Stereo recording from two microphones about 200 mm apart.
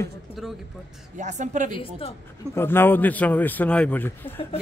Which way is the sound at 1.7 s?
25° left (ahead or behind).